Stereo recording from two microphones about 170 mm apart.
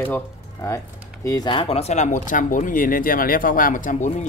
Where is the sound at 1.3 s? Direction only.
25° left (ahead or behind).